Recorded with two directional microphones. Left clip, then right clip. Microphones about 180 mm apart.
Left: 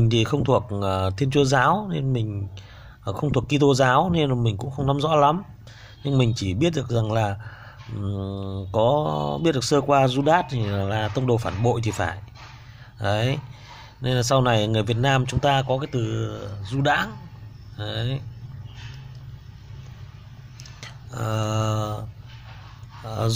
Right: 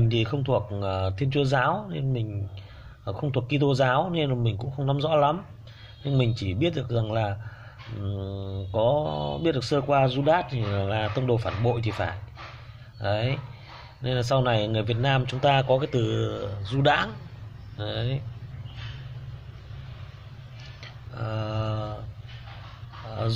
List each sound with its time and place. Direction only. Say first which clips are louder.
0.0 s a man's voice: left 5 dB; 30° left (ahead or behind)
6.0 s mantra: left 4 dB; 30° left (ahead or behind)
15.5 s speech: right 1 dB; 15° left (ahead or behind)
20.8 s a sound: left 5 dB; 30° left (ahead or behind)
23.0 s speech: left 4 dB; 30° left (ahead or behind)